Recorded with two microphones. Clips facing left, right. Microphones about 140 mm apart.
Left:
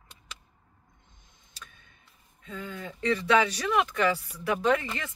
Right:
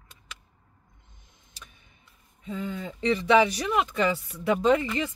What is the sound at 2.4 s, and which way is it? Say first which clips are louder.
Speech: right 5 dB; 20° right (ahead or behind).